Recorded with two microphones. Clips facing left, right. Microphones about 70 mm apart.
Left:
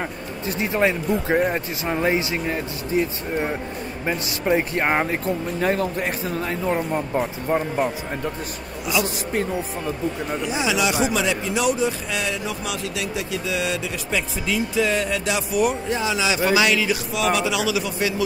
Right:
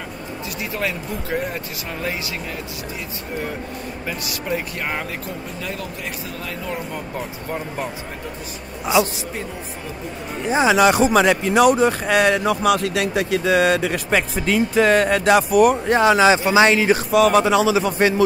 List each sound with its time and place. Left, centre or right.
0.6 s speech: left
10.4 s speech: right
16.5 s a man's voice: right